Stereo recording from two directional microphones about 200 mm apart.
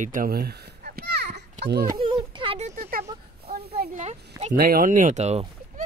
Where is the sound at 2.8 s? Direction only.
45° right (ahead or behind).